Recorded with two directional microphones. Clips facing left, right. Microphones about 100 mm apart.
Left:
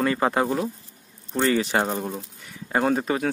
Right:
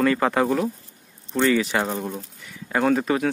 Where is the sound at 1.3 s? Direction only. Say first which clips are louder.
Right 1 dB; 35° left (ahead or behind).